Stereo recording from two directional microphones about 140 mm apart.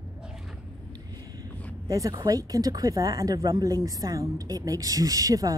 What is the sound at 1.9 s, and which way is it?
Speech, 25° right (ahead or behind).